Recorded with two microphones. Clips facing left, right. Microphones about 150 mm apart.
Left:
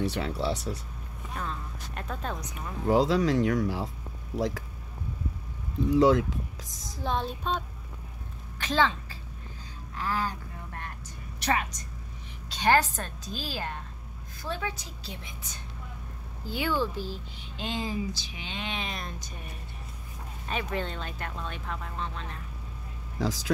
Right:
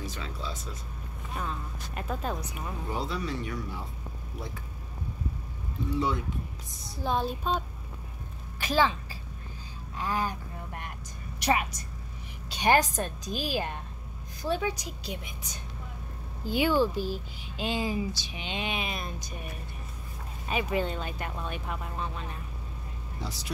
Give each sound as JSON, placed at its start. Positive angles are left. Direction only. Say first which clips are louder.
{"t": 0.0, "sound": "speech", "louder": "left 9 dB", "side_deg": 70}
{"t": 1.3, "sound": "speech", "louder": "even", "side_deg": -5}
{"t": 2.9, "sound": "speech", "louder": "left 11 dB", "side_deg": 90}
{"t": 5.9, "sound": "speech", "louder": "left 9 dB", "side_deg": 90}
{"t": 7.0, "sound": "speech", "louder": "right 2 dB", "side_deg": -5}
{"t": 9.9, "sound": "vehicle", "louder": "even", "side_deg": -15}
{"t": 11.3, "sound": "a woman's voice", "louder": "right 1 dB", "side_deg": -10}
{"t": 20.4, "sound": "speech", "louder": "right 3 dB", "side_deg": -10}
{"t": 23.1, "sound": "speech", "louder": "left 9 dB", "side_deg": 90}